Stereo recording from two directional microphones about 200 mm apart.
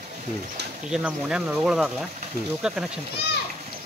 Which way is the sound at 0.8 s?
5° right (ahead or behind).